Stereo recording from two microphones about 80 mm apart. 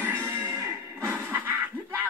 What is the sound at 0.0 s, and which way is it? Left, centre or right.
Music, right.